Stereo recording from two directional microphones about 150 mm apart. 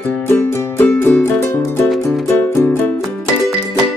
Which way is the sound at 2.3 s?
15° left (ahead or behind).